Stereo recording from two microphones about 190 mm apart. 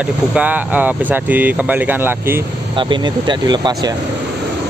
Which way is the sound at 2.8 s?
25° right (ahead or behind).